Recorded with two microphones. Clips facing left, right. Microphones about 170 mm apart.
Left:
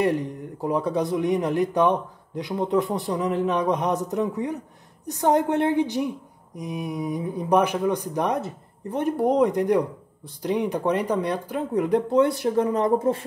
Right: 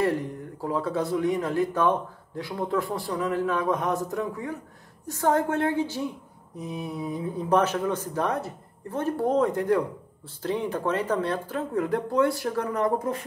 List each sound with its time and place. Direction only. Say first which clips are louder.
0.0 s speech: left 2 dB; 20° left (ahead or behind)